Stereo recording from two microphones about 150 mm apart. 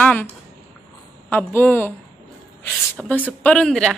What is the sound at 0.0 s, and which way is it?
Speech, 10° left (ahead or behind).